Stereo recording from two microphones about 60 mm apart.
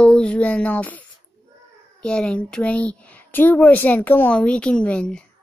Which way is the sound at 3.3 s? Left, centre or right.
Left.